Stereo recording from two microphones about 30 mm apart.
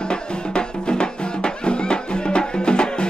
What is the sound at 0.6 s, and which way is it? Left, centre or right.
Music, left.